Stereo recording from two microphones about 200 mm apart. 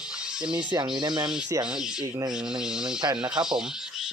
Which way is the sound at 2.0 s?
15° right (ahead or behind).